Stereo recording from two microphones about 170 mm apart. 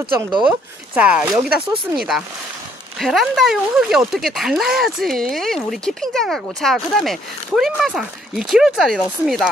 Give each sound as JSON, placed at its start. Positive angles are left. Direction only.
{"t": 0.0, "sound": "speech", "side_deg": -25}
{"t": 0.5, "sound": "speech", "side_deg": -10}